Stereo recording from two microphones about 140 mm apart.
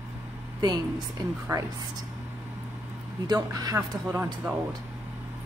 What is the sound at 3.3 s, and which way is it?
Speech, 25° right (ahead or behind).